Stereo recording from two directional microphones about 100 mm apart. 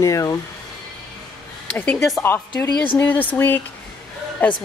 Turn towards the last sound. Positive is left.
turn(degrees=15)  # may be behind; listen again after turning